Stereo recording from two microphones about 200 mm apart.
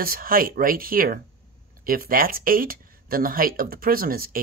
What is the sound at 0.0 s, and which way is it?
Speech, 45° right (ahead or behind).